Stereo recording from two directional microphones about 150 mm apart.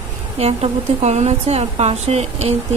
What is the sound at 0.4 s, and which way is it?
A woman's voice, 45° right (ahead or behind).